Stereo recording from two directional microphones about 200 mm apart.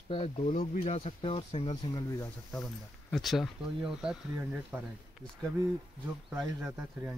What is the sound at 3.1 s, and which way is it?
Speech, centre (ahead or behind).